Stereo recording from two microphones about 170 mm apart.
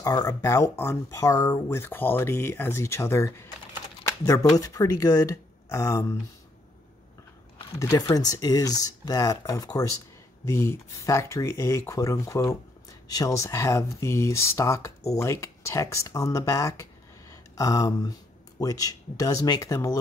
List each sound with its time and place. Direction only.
0.2 s speech: 20° left (ahead or behind)
7.7 s speech: 20° left (ahead or behind)
17.3 s a sound: 20° left (ahead or behind)
18.6 s speech: 20° left (ahead or behind)